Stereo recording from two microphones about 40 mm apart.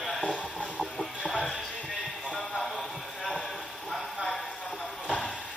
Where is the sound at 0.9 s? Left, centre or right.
Centre.